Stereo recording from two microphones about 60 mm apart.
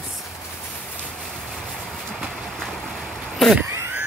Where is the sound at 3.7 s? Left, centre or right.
Right.